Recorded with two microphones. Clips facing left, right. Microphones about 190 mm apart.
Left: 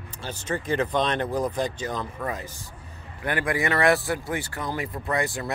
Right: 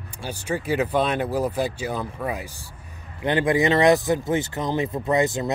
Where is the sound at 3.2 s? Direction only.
20° right (ahead or behind).